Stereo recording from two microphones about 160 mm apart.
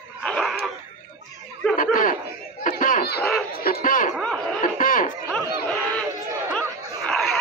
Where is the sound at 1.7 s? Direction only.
60° left (ahead or behind).